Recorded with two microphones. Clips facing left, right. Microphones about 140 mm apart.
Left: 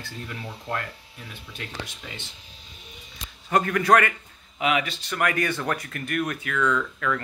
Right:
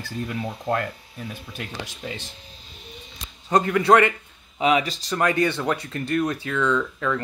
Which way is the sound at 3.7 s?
20° right (ahead or behind).